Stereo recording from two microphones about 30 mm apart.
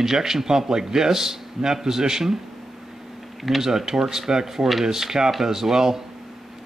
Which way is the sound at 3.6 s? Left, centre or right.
Centre.